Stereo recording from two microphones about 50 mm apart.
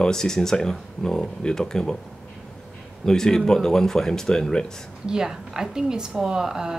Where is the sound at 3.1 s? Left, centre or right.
Centre.